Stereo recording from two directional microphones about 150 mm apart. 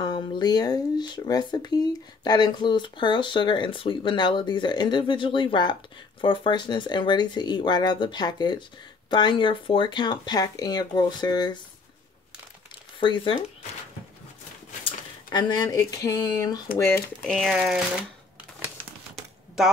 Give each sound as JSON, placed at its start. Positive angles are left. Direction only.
{"t": 0.0, "sound": "speech", "side_deg": 30}
{"t": 13.0, "sound": "speech", "side_deg": 30}
{"t": 15.2, "sound": "speech", "side_deg": 30}
{"t": 16.7, "sound": "speech", "side_deg": 15}